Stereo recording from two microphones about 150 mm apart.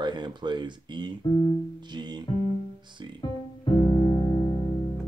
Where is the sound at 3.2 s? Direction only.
30° left (ahead or behind).